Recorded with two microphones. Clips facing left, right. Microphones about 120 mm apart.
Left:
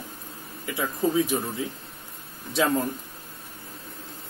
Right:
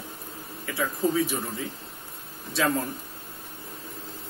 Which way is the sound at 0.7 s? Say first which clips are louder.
Left 1 dB; 20° left (ahead or behind).